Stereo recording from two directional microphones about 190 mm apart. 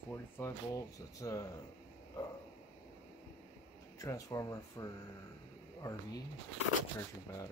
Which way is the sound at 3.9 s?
15° left (ahead or behind).